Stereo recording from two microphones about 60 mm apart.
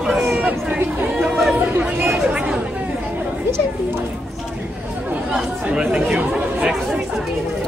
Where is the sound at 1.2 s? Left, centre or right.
Centre.